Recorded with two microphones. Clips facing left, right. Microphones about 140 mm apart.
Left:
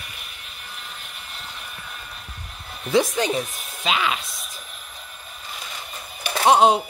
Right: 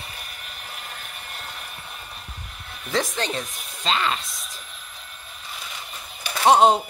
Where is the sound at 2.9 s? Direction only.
15° left (ahead or behind).